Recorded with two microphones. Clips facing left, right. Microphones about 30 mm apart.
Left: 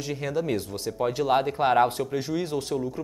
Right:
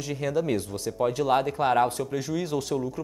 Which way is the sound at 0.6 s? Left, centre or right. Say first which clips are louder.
Even; left.